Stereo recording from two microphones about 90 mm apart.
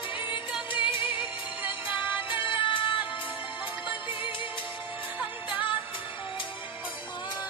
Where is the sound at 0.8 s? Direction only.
70° left (ahead or behind).